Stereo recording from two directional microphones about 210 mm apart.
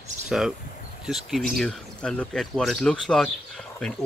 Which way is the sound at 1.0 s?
Centre (ahead or behind).